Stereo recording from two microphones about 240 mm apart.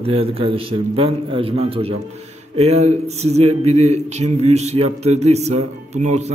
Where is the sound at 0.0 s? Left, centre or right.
Right.